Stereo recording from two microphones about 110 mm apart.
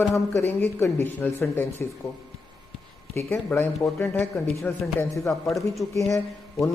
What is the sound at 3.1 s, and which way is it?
Speech, 20° left (ahead or behind).